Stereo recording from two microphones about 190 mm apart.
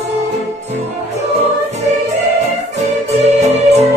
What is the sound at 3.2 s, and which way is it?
Music, 35° right (ahead or behind).